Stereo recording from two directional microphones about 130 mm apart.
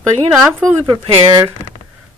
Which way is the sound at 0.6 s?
25° right (ahead or behind).